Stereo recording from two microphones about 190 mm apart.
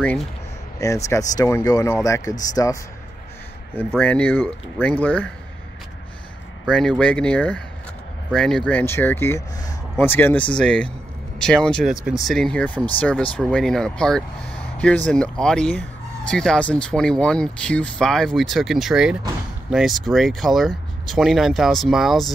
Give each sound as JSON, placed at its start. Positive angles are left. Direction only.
{"t": 0.7, "sound": "speech", "side_deg": 15}
{"t": 4.0, "sound": "speech", "side_deg": 10}
{"t": 6.7, "sound": "speech", "side_deg": 5}